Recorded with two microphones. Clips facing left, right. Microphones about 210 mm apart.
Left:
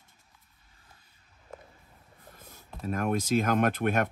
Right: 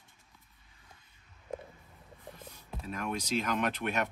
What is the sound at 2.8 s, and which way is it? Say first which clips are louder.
Speech: left 7 dB; 50° left (ahead or behind).